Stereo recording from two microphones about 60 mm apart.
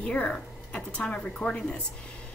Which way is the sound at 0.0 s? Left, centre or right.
Centre.